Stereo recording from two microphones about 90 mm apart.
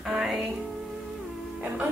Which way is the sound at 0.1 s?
5° right (ahead or behind).